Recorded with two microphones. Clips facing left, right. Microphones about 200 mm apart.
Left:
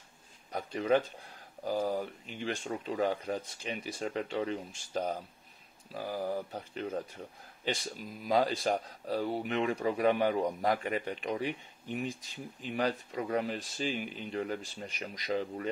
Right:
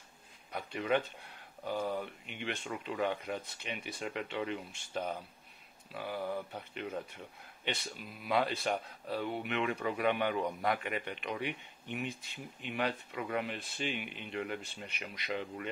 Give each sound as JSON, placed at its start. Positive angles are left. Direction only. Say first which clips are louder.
{"t": 0.5, "sound": "a man's voice", "louder": "left 4 dB", "side_deg": 35}